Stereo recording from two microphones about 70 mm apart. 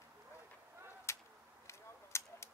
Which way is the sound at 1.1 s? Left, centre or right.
Left.